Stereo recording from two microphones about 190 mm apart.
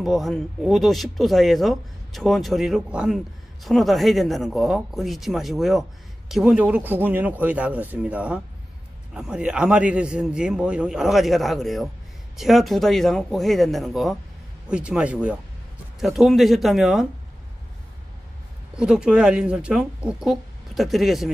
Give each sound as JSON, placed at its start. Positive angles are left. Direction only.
{"t": 0.0, "sound": "speech", "side_deg": 0}
{"t": 18.8, "sound": "speech", "side_deg": -5}